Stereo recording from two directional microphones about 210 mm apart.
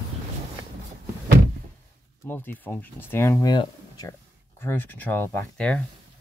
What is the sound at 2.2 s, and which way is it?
Speech, 10° left (ahead or behind).